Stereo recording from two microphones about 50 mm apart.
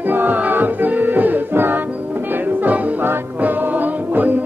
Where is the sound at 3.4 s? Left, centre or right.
Right.